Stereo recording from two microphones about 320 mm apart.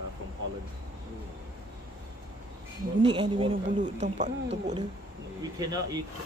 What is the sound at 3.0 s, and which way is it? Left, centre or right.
Speech, centre.